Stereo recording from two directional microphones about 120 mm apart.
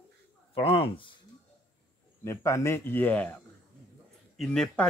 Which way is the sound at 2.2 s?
25° left (ahead or behind).